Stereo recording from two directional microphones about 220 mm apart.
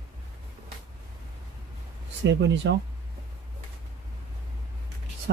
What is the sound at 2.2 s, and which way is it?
Speech, 55° right (ahead or behind).